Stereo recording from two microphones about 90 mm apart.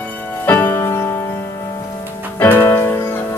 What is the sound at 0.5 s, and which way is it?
Music, 20° left (ahead or behind).